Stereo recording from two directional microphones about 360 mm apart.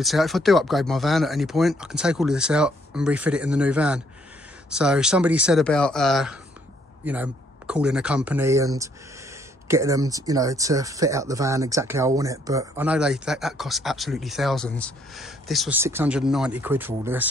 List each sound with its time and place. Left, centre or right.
0.0 s speech: centre